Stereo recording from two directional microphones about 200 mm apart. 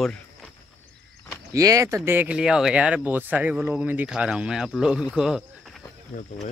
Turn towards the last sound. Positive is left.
turn(degrees=40)  # may be behind; listen again after turning